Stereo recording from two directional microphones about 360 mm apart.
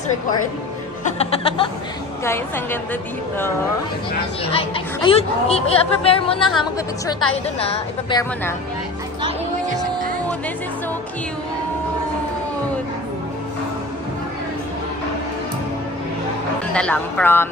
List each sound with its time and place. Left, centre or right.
1.1 s music: centre
2.2 s a woman's voice: centre
7.5 s a woman's voice: centre
16.7 s speech: centre